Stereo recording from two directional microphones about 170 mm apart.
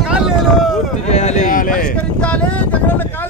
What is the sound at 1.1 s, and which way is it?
Speech, 40° left (ahead or behind).